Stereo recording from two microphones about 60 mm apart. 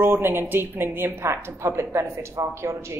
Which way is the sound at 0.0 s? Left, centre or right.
Right.